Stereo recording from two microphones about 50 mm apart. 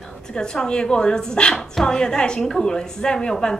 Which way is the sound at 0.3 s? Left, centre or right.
Centre.